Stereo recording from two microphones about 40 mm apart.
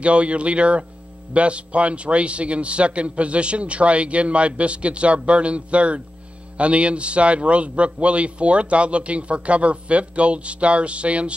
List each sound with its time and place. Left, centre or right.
0.0 s a man's voice: right